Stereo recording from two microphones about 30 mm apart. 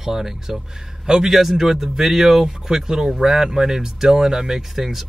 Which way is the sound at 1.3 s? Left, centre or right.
Centre.